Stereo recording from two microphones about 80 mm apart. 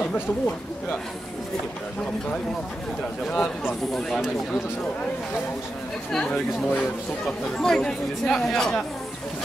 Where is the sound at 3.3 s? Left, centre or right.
Centre.